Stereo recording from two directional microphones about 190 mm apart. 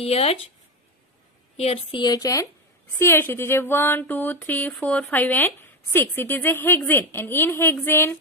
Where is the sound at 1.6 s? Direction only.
30° left (ahead or behind).